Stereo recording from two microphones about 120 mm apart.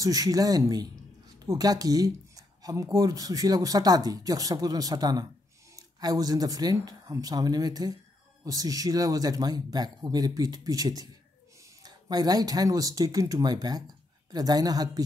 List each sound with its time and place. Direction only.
0.0 s speech: 30° right (ahead or behind)